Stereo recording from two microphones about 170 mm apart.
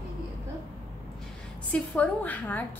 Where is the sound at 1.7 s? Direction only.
10° left (ahead or behind).